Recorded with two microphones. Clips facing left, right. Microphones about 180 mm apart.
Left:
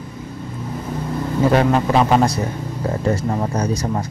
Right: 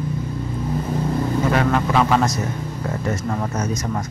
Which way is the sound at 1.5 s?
30° left (ahead or behind).